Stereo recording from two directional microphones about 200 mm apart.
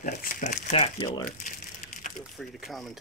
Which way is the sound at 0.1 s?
45° left (ahead or behind).